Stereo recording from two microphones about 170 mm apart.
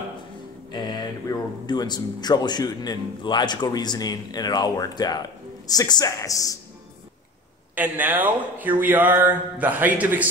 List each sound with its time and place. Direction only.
0.7 s speech: 25° left (ahead or behind)
7.7 s speech: 10° right (ahead or behind)